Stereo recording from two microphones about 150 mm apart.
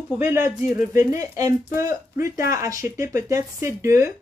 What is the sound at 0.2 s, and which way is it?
Speech, 15° right (ahead or behind).